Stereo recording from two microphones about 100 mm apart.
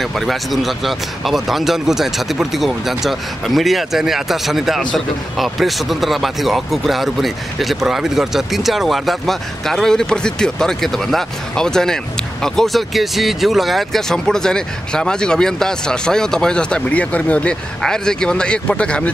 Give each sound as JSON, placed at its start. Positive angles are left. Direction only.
{"t": 0.0, "sound": "speech", "side_deg": 0}